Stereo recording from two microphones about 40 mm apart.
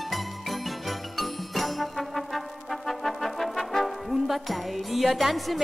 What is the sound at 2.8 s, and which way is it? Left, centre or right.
Brass instrument, centre.